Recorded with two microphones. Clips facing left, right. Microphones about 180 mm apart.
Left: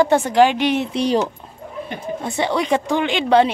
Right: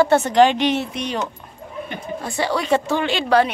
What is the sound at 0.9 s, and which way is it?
Speech, 35° left (ahead or behind).